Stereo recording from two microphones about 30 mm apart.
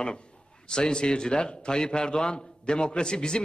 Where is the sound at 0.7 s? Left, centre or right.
Left.